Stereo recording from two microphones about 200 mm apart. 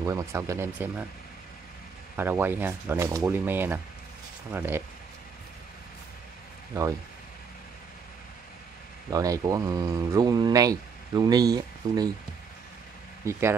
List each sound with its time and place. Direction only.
0.0 s speech: 15° right (ahead or behind)
2.1 s speech: 10° right (ahead or behind)
9.1 s speech: 15° right (ahead or behind)
13.2 s speech: 15° right (ahead or behind)